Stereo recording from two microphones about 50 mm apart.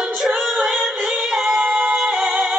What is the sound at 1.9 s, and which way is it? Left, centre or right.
Music, centre.